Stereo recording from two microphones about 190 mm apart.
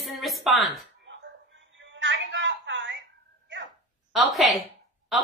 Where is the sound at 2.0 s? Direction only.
70° right (ahead or behind).